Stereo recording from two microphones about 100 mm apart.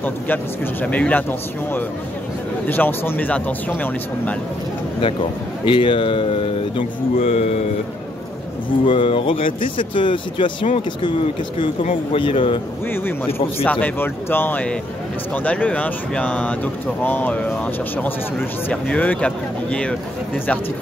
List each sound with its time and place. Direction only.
0.8 s speech: 15° left (ahead or behind)
2.7 s speech: 20° left (ahead or behind)
5.0 s speech: 50° left (ahead or behind)
7.2 s speech: 80° left
8.8 s speech: 60° left (ahead or behind)
12.9 s speech: 20° left (ahead or behind)
13.3 s a man's voice: 75° left (ahead or behind)
13.7 s speech: 15° left (ahead or behind)